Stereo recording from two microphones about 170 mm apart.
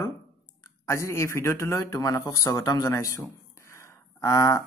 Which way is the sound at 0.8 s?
15° left (ahead or behind).